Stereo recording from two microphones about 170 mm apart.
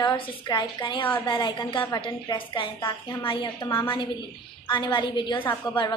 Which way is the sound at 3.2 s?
30° left (ahead or behind).